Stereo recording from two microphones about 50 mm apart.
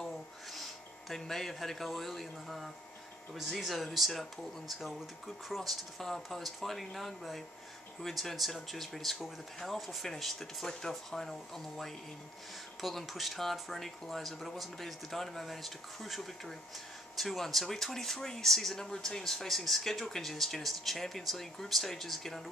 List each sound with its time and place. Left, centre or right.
0.5 s a man's voice: centre